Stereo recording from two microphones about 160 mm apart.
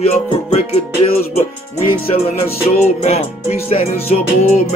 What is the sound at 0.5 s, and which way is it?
Music, 40° left (ahead or behind).